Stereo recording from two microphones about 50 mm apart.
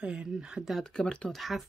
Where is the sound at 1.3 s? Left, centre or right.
Centre.